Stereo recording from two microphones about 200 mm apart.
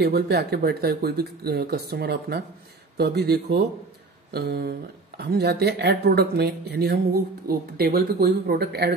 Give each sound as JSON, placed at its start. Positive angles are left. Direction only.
{"t": 0.0, "sound": "speech", "side_deg": -55}